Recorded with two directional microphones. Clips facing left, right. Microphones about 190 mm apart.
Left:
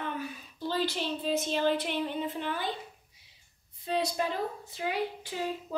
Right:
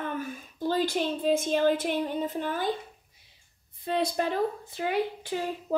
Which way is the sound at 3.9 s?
60° right (ahead or behind).